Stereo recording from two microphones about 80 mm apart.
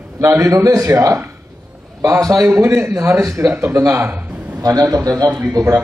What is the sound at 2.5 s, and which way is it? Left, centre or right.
A man's voice, right.